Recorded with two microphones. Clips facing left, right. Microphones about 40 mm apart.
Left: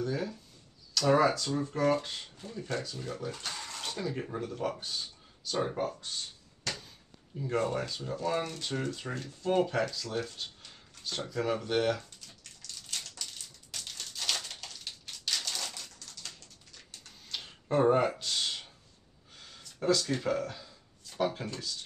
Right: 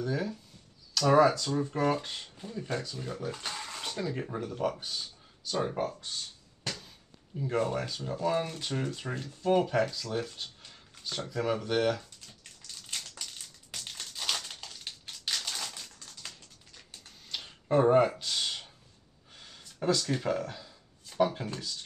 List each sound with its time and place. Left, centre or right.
0.0 s speech: centre
3.4 s bathtub: centre
3.9 s speech: centre
7.3 s speech: centre
12.9 s crushing: centre
14.9 s typewriter: centre
15.7 s a sound: right
17.3 s tick-tock: centre
17.6 s speech: centre
19.3 s a sound: centre